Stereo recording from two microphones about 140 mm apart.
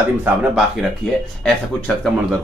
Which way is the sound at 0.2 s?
10° right (ahead or behind).